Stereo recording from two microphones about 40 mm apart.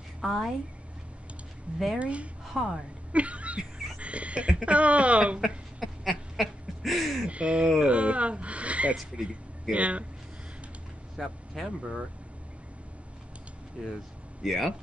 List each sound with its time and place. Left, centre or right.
0.2 s a woman's voice: centre
2.0 s speech: right
2.4 s speech: centre
3.1 s speech: right
5.8 s a sound: centre
7.2 s speech: right
11.1 s speech: centre
14.4 s speech: centre